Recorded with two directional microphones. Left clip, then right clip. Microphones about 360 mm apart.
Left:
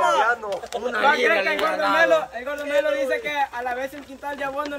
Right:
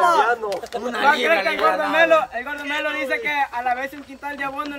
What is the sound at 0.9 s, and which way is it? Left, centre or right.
A man's voice, right.